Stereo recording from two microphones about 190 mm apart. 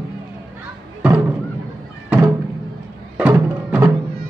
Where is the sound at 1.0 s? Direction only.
10° right (ahead or behind).